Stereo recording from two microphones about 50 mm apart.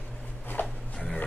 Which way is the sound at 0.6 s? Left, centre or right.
Left.